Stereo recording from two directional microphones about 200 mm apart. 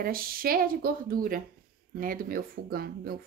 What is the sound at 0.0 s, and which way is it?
Speech, 45° right (ahead or behind).